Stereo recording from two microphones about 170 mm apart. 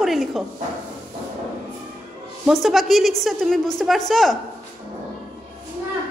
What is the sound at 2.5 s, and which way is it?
A woman's voice, centre (ahead or behind).